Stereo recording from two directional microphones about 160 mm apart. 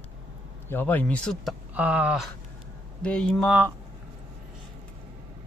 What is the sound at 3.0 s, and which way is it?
Speech, 5° left (ahead or behind).